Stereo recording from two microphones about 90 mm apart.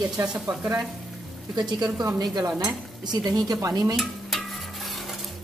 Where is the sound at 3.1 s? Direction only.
50° right (ahead or behind).